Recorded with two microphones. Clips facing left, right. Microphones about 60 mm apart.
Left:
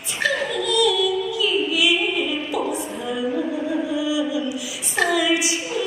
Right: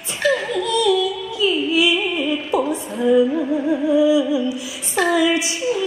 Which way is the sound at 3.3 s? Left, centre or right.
Right.